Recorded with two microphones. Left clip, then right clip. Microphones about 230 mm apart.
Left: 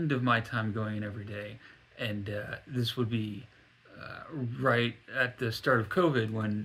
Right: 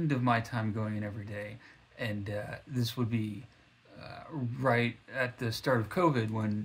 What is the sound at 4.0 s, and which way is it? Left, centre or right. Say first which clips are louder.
Speech: left 1 dB; centre.